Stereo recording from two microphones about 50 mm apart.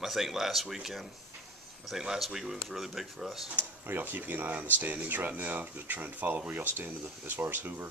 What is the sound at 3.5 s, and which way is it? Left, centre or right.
Speech, right.